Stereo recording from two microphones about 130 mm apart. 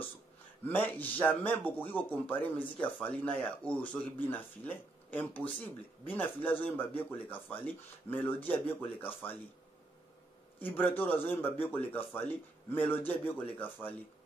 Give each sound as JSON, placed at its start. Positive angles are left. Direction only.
{"t": 0.7, "sound": "speech", "side_deg": 15}
{"t": 10.6, "sound": "speech", "side_deg": 15}